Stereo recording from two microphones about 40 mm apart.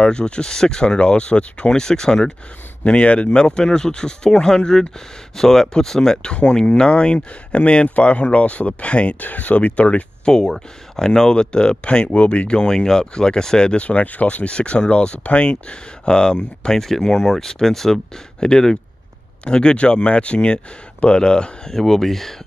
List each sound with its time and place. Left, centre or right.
0.0 s speech: left
1.7 s speech: centre
2.8 s speech: left
10.3 s speech: centre
17.1 s speech: centre; by 21.7 s left
21.7 s speech: centre